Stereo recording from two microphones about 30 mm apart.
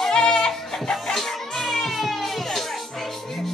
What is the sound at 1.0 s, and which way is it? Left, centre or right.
Music, centre.